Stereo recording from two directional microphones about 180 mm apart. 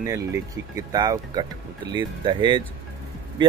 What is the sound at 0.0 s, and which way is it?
Speech, 15° right (ahead or behind).